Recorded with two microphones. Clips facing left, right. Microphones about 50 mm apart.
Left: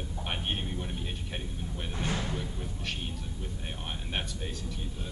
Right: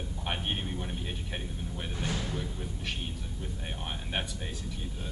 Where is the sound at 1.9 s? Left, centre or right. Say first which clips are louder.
Left 2 dB; left.